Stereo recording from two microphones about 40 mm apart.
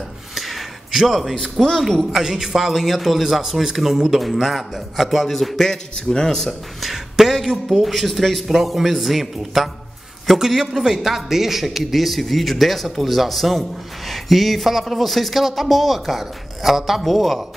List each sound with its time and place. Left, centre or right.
0.3 s a sound: centre
1.4 s a man's voice: centre
2.1 s a man's voice: centre
5.6 s a man's voice: centre
6.8 s a sound: centre
7.8 s a man's voice: centre